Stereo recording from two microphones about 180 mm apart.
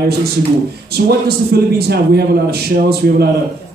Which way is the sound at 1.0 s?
55° right (ahead or behind).